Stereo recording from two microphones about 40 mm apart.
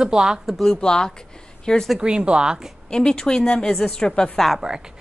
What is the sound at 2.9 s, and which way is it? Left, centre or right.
A woman's voice, centre.